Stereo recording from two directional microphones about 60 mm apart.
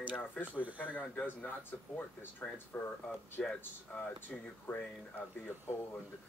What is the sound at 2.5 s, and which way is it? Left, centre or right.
Speech, left.